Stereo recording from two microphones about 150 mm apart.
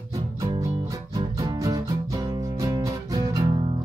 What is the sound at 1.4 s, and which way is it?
Music, 25° right (ahead or behind).